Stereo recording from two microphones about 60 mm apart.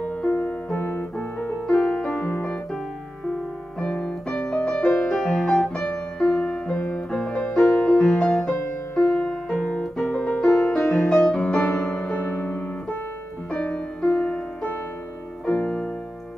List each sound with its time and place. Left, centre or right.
0.2 s music: left
0.7 s piano: left
1.7 s music: centre
2.3 s piano: centre
3.8 s piano: centre
4.9 s music: centre